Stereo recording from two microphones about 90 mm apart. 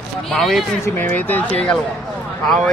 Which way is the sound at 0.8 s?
20° left (ahead or behind).